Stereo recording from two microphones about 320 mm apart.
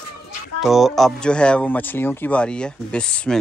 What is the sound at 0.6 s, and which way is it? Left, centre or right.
Speech, centre.